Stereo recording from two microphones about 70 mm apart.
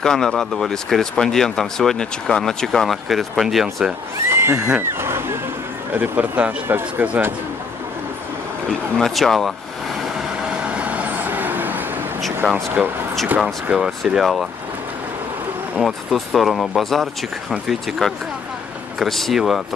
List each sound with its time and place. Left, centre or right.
0.0 s speech: centre
4.3 s speech: right
5.9 s speech: right
8.6 s speech: centre
10.5 s vehicle: centre
12.4 s speech: right
13.7 s speech: centre
15.8 s speech: centre